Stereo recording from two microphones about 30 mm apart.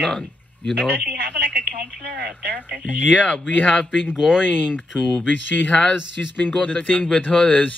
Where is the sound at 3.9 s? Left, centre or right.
Right.